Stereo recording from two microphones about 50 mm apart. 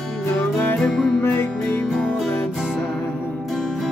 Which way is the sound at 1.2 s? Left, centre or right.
Left.